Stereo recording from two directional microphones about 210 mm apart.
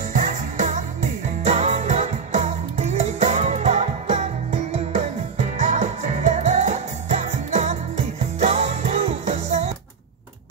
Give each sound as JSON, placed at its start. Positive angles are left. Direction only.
{"t": 0.1, "sound": "music", "side_deg": -35}